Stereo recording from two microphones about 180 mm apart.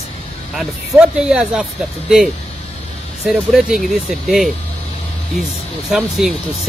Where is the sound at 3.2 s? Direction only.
Centre (ahead or behind).